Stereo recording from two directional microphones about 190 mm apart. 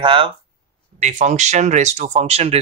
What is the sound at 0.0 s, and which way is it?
Speech, 25° right (ahead or behind).